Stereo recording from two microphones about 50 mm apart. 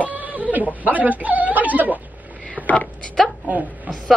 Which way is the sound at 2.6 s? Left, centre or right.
Right.